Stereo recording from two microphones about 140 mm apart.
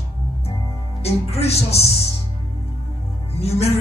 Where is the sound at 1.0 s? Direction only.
45° left (ahead or behind).